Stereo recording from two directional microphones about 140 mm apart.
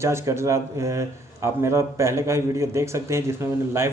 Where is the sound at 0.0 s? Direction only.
20° right (ahead or behind).